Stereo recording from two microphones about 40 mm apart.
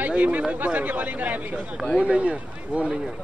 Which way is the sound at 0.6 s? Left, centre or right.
Right.